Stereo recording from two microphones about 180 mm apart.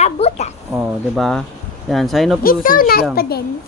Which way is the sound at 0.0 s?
35° left (ahead or behind).